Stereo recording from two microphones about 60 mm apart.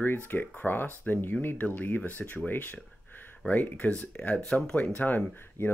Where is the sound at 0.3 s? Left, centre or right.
Left.